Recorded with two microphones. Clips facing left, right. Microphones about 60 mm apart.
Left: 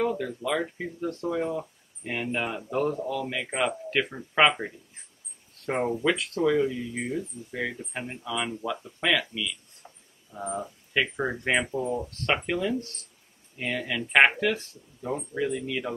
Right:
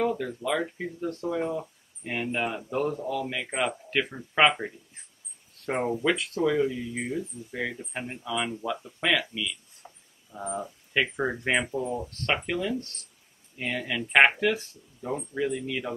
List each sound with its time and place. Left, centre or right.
0.0 s speech: centre
9.8 s a sound: centre
10.3 s speech: centre